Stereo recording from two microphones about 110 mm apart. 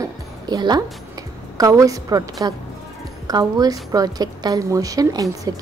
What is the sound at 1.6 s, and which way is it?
Speech, 30° right (ahead or behind).